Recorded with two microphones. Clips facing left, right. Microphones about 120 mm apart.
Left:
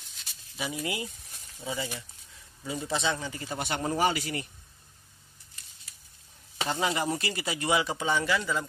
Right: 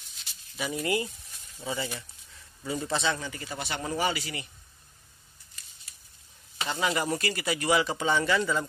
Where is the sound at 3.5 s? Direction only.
45° left (ahead or behind).